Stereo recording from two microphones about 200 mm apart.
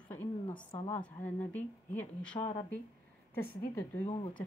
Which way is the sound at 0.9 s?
10° left (ahead or behind).